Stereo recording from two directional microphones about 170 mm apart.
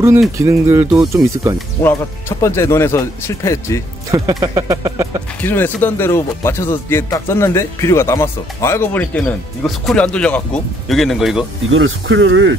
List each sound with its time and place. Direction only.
0.4 s speech: 15° right (ahead or behind)
1.8 s speech: 15° left (ahead or behind)
4.1 s speech: 20° right (ahead or behind)
5.4 s speech: 10° left (ahead or behind)
12.2 s speech: 90° right